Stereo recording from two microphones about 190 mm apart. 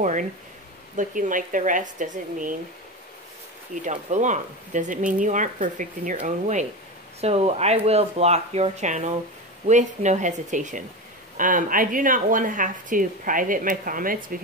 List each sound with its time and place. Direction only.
0.0 s speech: 40° right (ahead or behind)
3.8 s speech: 40° right (ahead or behind)